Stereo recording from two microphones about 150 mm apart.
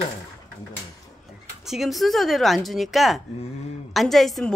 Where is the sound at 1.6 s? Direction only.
Centre (ahead or behind).